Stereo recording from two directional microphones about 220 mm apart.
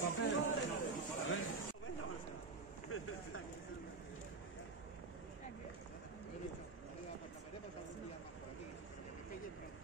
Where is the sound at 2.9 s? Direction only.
75° left (ahead or behind).